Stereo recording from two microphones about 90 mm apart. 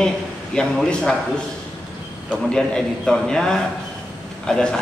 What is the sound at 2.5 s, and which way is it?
A man's voice, 10° left (ahead or behind).